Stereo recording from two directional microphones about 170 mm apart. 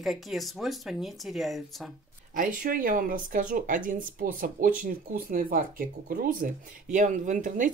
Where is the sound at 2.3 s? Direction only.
55° right (ahead or behind).